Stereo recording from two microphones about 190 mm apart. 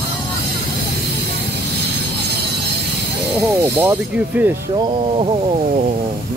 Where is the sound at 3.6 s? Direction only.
10° right (ahead or behind).